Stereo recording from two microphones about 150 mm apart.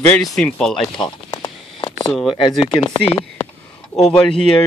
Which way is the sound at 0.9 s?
30° left (ahead or behind).